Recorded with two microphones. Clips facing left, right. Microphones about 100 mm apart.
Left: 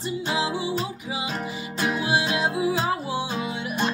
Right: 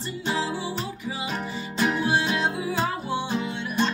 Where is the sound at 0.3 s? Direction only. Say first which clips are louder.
Even; 15° left (ahead or behind).